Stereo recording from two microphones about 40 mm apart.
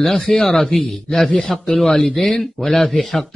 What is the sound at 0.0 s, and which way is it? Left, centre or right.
Speech, centre.